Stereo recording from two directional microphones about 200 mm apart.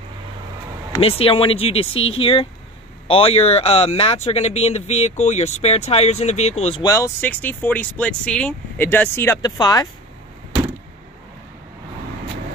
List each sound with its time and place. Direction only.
1.0 s speech: 30° left (ahead or behind)
6.8 s speech: 15° left (ahead or behind)